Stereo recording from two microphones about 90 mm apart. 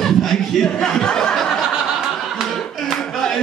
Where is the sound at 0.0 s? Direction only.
5° left (ahead or behind).